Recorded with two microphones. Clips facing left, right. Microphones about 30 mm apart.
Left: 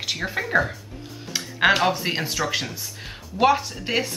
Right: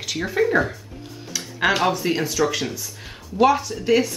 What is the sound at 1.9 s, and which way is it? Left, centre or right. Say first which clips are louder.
Speech: right 4 dB; centre.